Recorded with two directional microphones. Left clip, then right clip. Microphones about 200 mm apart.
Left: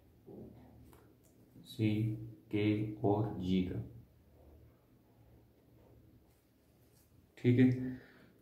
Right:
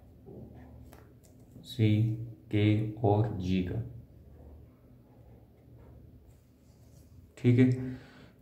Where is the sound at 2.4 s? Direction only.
35° right (ahead or behind).